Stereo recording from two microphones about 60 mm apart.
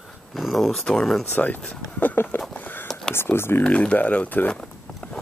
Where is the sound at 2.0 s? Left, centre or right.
Left.